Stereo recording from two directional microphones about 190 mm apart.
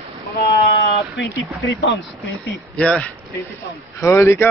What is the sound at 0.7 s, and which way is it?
Speech, 65° left (ahead or behind).